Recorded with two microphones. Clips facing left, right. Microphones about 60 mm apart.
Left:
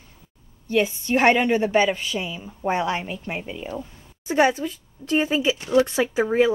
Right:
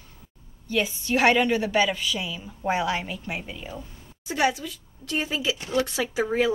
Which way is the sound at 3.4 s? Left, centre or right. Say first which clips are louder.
Left 5 dB; centre.